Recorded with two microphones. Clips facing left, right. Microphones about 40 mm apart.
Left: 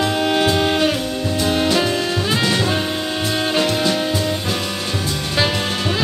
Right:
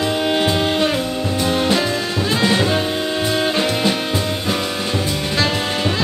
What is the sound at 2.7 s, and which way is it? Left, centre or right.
Music, centre.